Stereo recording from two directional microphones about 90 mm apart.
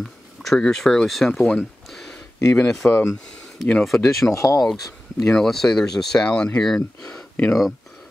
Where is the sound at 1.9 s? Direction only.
5° left (ahead or behind).